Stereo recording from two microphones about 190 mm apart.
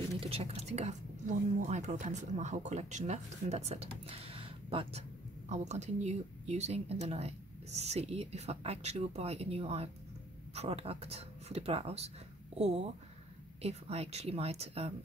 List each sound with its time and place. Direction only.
0.2 s speech: 30° right (ahead or behind)